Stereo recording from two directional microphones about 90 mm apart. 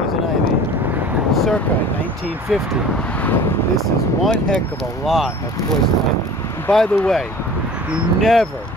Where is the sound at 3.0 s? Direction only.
15° left (ahead or behind).